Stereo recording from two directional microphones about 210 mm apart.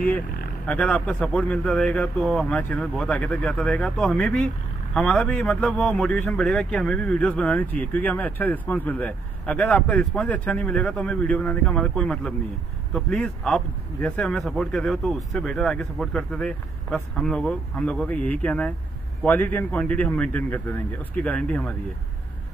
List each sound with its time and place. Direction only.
0.7 s a man's voice: 5° left (ahead or behind)